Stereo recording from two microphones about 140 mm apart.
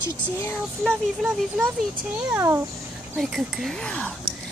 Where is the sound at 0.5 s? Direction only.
5° left (ahead or behind).